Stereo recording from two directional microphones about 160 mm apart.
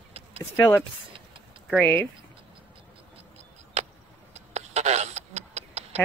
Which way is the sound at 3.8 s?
45° right (ahead or behind).